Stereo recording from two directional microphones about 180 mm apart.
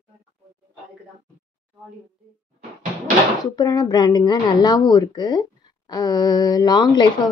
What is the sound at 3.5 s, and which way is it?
Speech, 20° left (ahead or behind).